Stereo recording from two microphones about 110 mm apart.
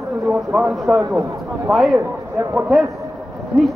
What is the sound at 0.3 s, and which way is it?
A man's voice, 5° right (ahead or behind).